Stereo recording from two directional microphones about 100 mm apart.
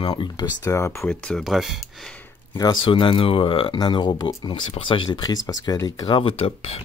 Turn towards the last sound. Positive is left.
turn(degrees=80)